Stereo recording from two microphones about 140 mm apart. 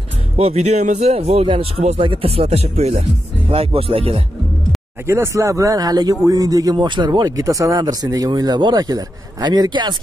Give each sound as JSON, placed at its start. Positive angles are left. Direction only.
{"t": 0.4, "sound": "speech", "side_deg": -50}
{"t": 5.0, "sound": "speech", "side_deg": -20}